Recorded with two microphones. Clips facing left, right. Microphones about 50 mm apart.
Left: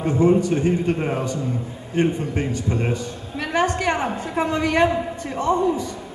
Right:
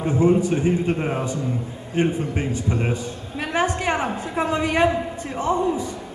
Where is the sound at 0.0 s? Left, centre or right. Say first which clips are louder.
Left 1 dB; centre.